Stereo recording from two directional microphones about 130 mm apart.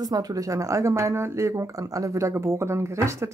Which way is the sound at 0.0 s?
30° right (ahead or behind).